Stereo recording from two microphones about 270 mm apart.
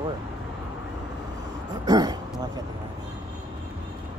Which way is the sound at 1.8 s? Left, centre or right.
Centre.